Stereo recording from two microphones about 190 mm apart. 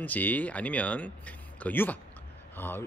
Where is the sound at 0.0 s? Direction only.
10° left (ahead or behind).